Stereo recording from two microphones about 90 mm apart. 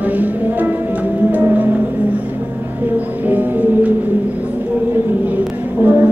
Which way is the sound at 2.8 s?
20° right (ahead or behind).